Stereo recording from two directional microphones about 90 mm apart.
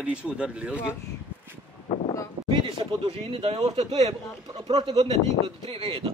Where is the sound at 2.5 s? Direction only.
80° right.